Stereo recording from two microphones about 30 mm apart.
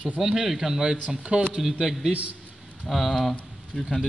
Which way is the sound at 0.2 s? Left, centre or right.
Centre.